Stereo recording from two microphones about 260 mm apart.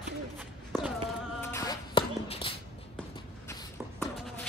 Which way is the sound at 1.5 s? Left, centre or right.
Centre.